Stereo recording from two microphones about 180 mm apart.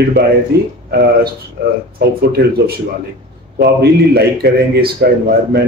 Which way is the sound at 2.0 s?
60° right (ahead or behind).